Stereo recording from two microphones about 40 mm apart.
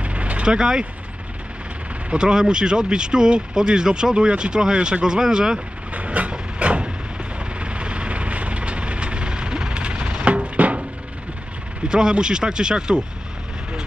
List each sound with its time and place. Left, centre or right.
0.0 s vehicle: right
0.5 s speech: centre
2.0 s speech: right
4.7 s vehicle: right
5.0 s speech: centre
5.9 s vehicle: right
11.9 s speech: right